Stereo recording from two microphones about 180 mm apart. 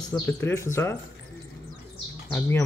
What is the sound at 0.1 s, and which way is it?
Speech, 10° left (ahead or behind).